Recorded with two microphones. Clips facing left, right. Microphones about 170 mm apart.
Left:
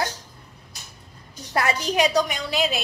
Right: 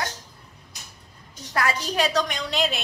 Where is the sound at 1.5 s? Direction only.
25° left (ahead or behind).